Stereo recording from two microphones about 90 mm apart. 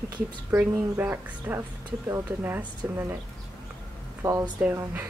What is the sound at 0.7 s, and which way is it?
Speech, 25° right (ahead or behind).